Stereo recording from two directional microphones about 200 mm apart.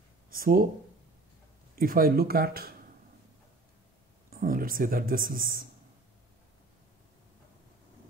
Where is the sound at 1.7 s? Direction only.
45° right (ahead or behind).